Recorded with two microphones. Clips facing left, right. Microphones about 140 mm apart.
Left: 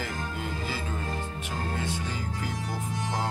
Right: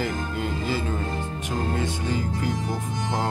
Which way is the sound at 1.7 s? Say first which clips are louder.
Right 6 dB; 65° right (ahead or behind).